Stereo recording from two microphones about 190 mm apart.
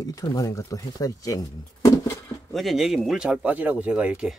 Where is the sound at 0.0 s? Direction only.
20° left (ahead or behind).